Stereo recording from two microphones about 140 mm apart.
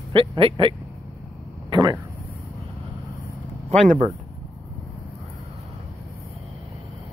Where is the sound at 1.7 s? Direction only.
30° right (ahead or behind).